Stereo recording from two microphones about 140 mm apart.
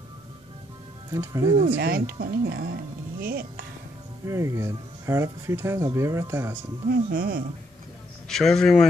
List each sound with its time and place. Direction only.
1.1 s speech: 25° right (ahead or behind)
1.8 s speech: 90° right
4.3 s speech: 20° right (ahead or behind)
6.9 s speech: 90° right
8.3 s a man's voice: 5° left (ahead or behind)